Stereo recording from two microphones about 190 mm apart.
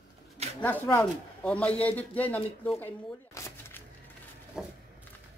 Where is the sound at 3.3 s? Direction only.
15° left (ahead or behind).